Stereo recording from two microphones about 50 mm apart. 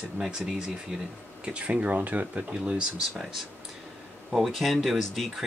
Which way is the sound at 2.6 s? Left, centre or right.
Centre.